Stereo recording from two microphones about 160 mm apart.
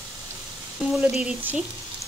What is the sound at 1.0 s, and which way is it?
Speech, 10° right (ahead or behind).